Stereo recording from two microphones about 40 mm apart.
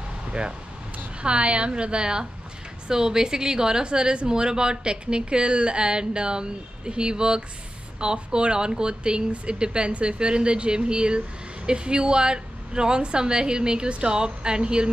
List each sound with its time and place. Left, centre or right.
0.3 s speech: right